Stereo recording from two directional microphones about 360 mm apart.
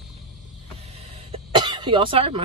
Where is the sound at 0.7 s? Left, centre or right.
Centre.